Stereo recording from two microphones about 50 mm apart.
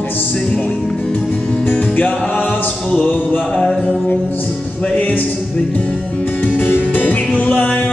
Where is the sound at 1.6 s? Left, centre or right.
Left.